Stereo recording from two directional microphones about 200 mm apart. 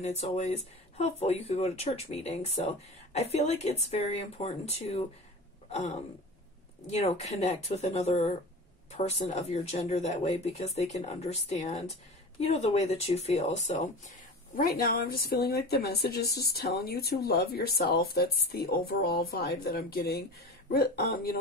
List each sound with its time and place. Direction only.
0.0 s speech: 30° left (ahead or behind)
6.9 s speech: 30° left (ahead or behind); by 21.4 s 50° left (ahead or behind)